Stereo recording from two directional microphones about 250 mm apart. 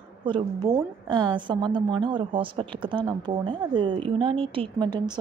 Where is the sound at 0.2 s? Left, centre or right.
Centre.